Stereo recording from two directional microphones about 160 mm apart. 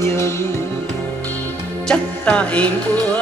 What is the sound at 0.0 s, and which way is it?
Music, 15° left (ahead or behind).